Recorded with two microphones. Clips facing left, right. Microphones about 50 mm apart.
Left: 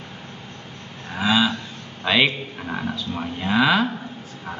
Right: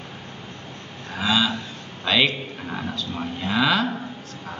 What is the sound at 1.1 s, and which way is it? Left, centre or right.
Cattle, centre.